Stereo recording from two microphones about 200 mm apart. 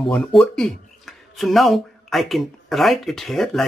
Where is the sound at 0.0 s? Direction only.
Centre (ahead or behind).